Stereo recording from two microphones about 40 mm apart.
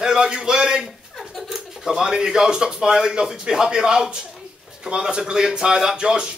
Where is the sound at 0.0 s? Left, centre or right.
Centre.